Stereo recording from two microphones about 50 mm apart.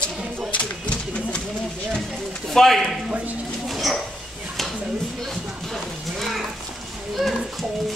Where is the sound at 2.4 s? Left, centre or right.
Centre.